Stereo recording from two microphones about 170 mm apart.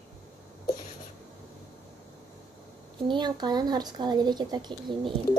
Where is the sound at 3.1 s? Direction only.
25° right (ahead or behind).